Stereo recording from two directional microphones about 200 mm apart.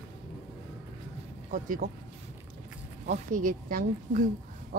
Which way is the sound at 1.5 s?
40° right (ahead or behind).